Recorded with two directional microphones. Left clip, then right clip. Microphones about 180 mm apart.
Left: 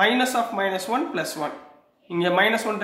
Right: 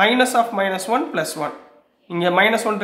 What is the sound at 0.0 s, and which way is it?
Speech, 35° right (ahead or behind).